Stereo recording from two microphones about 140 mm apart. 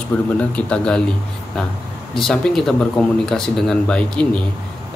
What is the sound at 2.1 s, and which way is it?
Speech, centre (ahead or behind).